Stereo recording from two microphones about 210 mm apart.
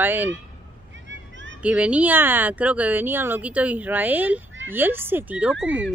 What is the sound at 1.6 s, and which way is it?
Speech, 5° right (ahead or behind).